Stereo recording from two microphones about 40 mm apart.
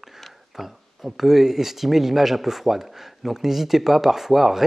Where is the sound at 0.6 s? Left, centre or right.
Centre.